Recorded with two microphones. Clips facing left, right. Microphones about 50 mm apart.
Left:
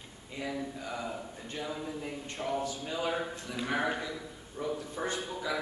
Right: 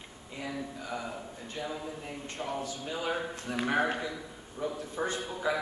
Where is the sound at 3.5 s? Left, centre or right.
Right.